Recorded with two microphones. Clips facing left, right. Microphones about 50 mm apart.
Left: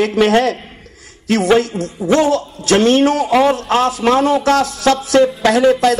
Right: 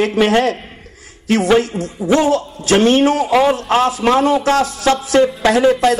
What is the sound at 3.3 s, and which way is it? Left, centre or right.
Speech, centre.